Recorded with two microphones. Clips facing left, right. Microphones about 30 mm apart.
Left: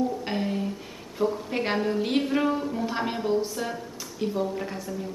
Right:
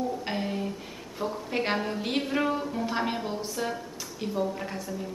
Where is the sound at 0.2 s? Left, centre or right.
Centre.